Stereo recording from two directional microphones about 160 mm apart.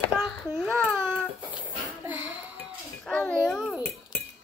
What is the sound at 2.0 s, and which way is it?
Music, 10° right (ahead or behind).